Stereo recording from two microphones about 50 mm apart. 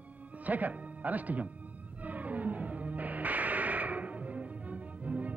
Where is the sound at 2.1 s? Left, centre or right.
Right.